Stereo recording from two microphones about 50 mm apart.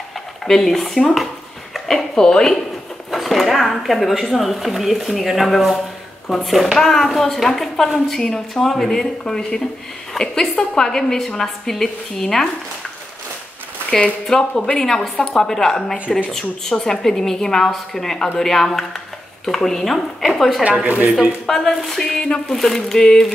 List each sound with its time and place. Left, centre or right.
0.5 s speech: centre
3.1 s a sound: centre
3.6 s a woman's voice: centre
10.1 s a sound: centre
10.5 s a woman's voice: left
10.8 s a woman's voice: centre
14.3 s a woman's voice: centre
20.8 s speech: right
21.5 s a woman's voice: centre